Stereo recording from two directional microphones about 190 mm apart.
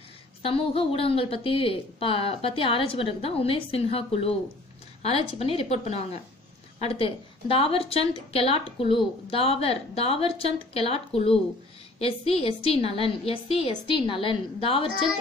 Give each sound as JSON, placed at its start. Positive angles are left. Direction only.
{"t": 0.5, "sound": "a woman's voice", "side_deg": 30}